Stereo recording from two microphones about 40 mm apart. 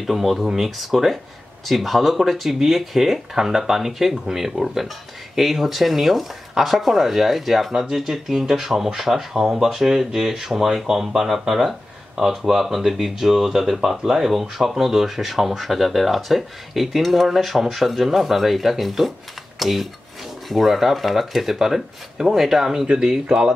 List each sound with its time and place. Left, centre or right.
0.0 s speech: centre